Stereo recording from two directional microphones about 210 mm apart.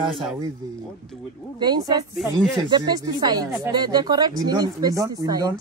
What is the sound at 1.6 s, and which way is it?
Speech, 20° right (ahead or behind).